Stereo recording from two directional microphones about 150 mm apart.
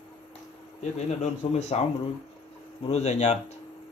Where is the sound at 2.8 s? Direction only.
45° left (ahead or behind).